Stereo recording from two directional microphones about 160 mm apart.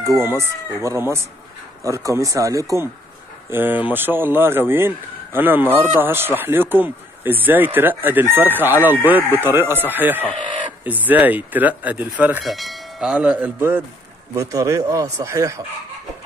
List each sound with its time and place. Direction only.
0.4 s speech: 15° right (ahead or behind)
12.4 s speech: centre (ahead or behind); by 15.6 s 20° right (ahead or behind)